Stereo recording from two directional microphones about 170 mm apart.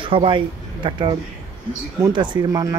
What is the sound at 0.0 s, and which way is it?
Speech, 30° right (ahead or behind).